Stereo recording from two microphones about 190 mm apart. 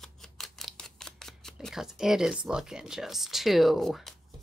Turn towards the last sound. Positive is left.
turn(degrees=0)  # may be behind; listen again after turning